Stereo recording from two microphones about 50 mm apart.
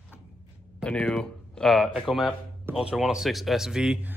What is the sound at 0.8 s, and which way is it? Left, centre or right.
Speech, left.